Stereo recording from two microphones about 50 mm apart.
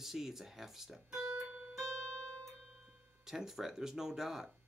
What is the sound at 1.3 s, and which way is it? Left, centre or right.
Music, centre.